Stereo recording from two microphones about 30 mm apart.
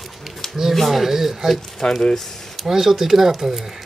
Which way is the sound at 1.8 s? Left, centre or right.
Left.